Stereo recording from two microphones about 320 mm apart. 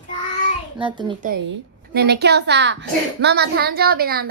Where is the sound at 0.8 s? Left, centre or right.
Centre.